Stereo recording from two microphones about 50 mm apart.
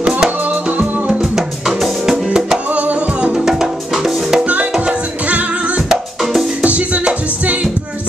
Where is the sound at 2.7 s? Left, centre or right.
Right.